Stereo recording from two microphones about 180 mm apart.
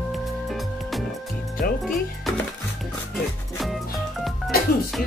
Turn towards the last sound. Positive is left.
turn(degrees=0)  # may be behind; listen again after turning